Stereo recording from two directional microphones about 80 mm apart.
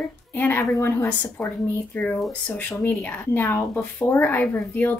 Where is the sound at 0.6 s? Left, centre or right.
Left.